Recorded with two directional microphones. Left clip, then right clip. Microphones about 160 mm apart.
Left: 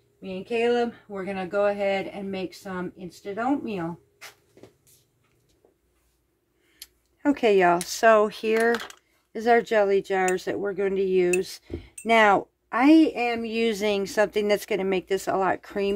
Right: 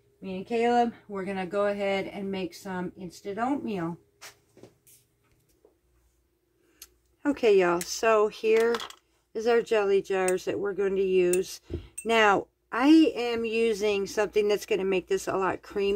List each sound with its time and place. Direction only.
0.2 s speech: centre (ahead or behind)
6.8 s a sound: 35° left (ahead or behind)
7.9 s speech: 45° left (ahead or behind)